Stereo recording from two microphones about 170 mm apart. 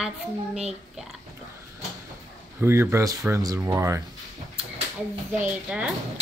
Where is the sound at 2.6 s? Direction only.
15° right (ahead or behind).